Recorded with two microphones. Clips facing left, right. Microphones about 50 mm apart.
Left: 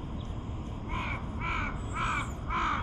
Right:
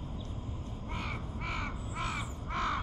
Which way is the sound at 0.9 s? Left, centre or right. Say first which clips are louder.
Left 4 dB; left.